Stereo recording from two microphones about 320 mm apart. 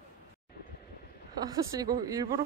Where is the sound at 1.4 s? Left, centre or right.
Centre.